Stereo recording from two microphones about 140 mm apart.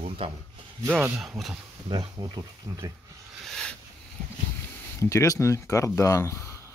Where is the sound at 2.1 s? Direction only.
25° right (ahead or behind).